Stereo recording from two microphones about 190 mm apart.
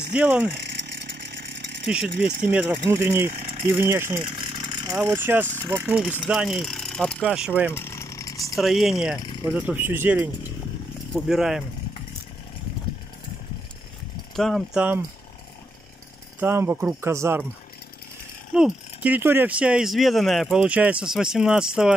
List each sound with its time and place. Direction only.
0.1 s speech: 5° right (ahead or behind)
0.6 s chainsaw: 65° right (ahead or behind)
2.2 s speech: 10° right (ahead or behind)
2.9 s speech: 15° right (ahead or behind)
3.3 s a sound: 35° right (ahead or behind)
3.6 s speech: 15° right (ahead or behind)
4.2 s mechanisms: 30° right (ahead or behind)
5.0 s speech: 10° right (ahead or behind); by 7.2 s 5° left (ahead or behind)
7.2 s speech: 5° right (ahead or behind)
7.7 s a sound: 15° left (ahead or behind)
8.5 s speech: centre (ahead or behind)
14.3 s speech: centre (ahead or behind)
16.3 s speech: 10° right (ahead or behind)
18.5 s speech: 5° right (ahead or behind)